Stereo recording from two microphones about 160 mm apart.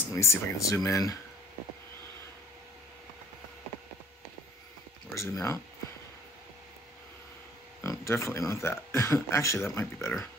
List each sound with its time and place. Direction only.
0.1 s a man's voice: 20° left (ahead or behind)
5.1 s speech: 20° left (ahead or behind)
7.8 s a man's voice: 20° left (ahead or behind)